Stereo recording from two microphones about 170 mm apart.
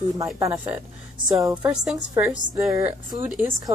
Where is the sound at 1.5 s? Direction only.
5° right (ahead or behind).